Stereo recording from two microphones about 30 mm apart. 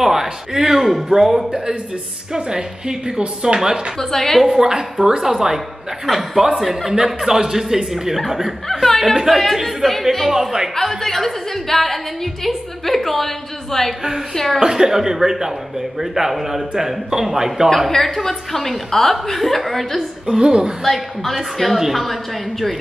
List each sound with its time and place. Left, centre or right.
0.0 s a man's voice: centre
1.1 s a man's voice: centre
4.0 s a woman's voice: centre
4.5 s a woman's voice: right
8.8 s a woman's voice: centre
10.3 s a man's voice: centre
10.8 s a woman's voice: centre
14.6 s a man's voice: right
17.9 s a woman's voice: centre
20.2 s a woman's voice: right
20.8 s a woman's voice: centre